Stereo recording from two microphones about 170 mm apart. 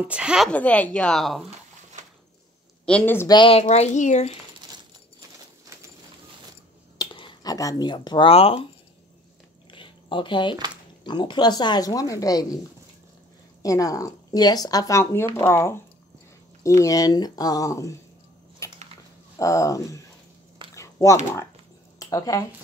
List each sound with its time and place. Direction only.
0.0 s a woman's voice: 5° right (ahead or behind)
0.5 s speech: 10° left (ahead or behind)
2.8 s speech: 10° left (ahead or behind)
3.3 s speech: 30° left (ahead or behind)
7.0 s speech: 25° left (ahead or behind)
9.7 s a sound: 30° left (ahead or behind)
11.1 s speech: 25° left (ahead or behind)
13.6 s speech: 20° left (ahead or behind)
18.6 s a sound: 15° left (ahead or behind)
19.3 s speech: 20° left (ahead or behind)
20.7 s a sound: 15° left (ahead or behind)
21.9 s speech: 20° left (ahead or behind)